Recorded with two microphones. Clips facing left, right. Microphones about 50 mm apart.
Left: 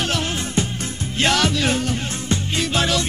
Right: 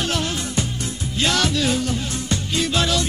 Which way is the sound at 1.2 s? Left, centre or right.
Left.